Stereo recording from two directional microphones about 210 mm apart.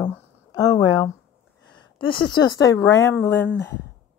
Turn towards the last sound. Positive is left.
turn(degrees=10)  # may be behind; listen again after turning